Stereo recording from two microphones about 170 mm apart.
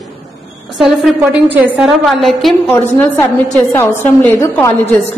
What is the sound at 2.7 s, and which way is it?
A woman's voice, 10° left (ahead or behind).